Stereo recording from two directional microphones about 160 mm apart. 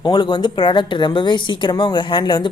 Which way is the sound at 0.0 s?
30° left (ahead or behind).